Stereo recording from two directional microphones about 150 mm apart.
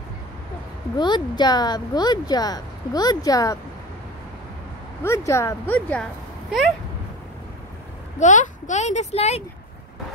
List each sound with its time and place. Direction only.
0.9 s speech: 30° left (ahead or behind)
5.0 s speech: 20° left (ahead or behind)
8.2 s speech: 55° left (ahead or behind)